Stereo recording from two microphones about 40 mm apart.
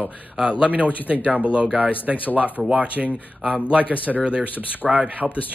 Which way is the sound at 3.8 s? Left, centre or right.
Left.